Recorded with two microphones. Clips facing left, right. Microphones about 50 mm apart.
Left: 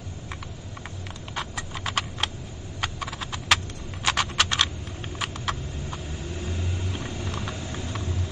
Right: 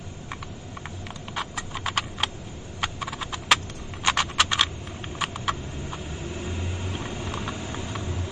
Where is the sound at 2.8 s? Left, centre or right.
Centre.